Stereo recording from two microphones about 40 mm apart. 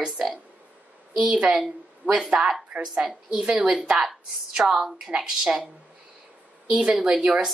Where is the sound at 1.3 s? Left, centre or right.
Right.